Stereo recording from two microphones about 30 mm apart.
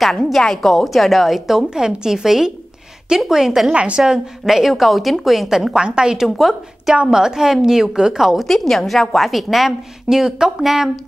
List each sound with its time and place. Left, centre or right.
0.0 s a woman's voice: centre
1.7 s a woman's voice: right
3.7 s a woman's voice: right
4.5 s a woman's voice: centre
5.7 s a woman's voice: right
6.4 s a woman's voice: centre
7.1 s a woman's voice: right
8.5 s a woman's voice: centre
10.0 s speech: centre
10.6 s a woman's voice: centre